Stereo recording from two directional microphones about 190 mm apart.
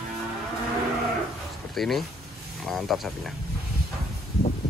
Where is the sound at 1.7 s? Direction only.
Centre (ahead or behind).